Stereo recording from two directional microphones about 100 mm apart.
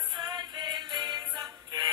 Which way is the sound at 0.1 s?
45° right (ahead or behind).